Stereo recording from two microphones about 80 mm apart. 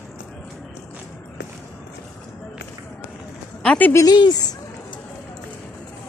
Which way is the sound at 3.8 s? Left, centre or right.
Left.